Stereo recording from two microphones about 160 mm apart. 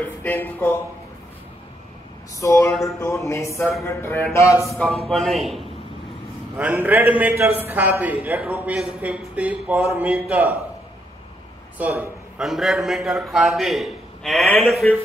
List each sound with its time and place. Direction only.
0.0 s speech: 10° left (ahead or behind)
2.4 s speech: 20° left (ahead or behind)
3.8 s a sound: 15° left (ahead or behind)
4.7 s a man's voice: centre (ahead or behind)
6.5 s speech: 10° right (ahead or behind)
11.8 s a man's voice: centre (ahead or behind)